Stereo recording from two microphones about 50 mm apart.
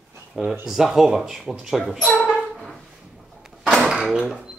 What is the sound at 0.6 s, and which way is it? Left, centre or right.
Speech, centre.